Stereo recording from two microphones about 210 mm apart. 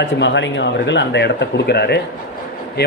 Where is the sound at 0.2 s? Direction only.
55° left (ahead or behind).